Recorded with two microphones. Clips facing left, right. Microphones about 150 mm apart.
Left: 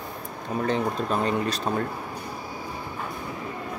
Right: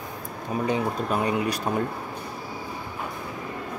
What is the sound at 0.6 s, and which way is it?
A man's voice, 10° right (ahead or behind).